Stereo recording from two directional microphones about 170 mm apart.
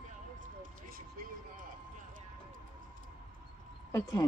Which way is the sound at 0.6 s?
55° right (ahead or behind).